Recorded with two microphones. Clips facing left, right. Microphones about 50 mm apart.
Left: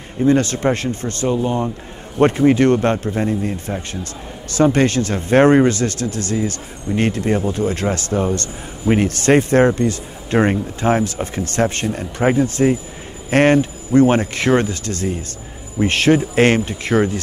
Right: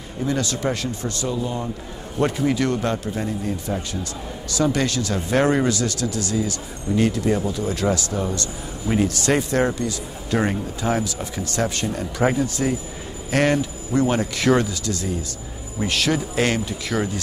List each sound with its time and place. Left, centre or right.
0.3 s a man's voice: left